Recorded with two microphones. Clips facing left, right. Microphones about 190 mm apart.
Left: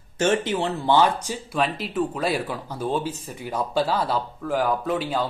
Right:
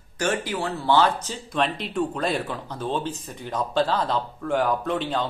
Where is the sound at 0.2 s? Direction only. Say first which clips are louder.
Left 4 dB; 20° left (ahead or behind).